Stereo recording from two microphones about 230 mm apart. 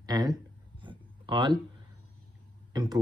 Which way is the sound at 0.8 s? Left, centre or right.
Right.